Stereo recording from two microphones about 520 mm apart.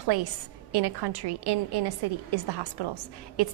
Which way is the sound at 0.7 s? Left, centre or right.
Right.